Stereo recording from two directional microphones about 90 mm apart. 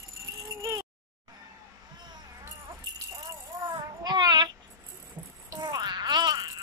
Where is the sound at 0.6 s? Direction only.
40° right (ahead or behind).